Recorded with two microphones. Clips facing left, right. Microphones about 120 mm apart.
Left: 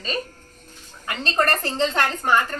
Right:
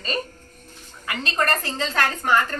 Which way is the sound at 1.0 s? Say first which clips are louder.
Left 2 dB; 35° left (ahead or behind).